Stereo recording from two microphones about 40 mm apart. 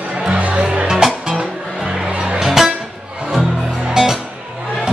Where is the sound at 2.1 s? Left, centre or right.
Right.